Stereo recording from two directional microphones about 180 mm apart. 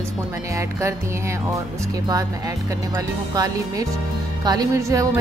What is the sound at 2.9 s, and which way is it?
Speech, 20° right (ahead or behind).